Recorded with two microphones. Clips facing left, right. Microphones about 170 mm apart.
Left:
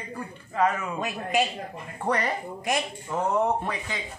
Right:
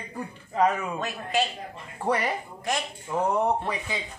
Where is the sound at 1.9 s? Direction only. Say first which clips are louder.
Right 1 dB; 10° right (ahead or behind).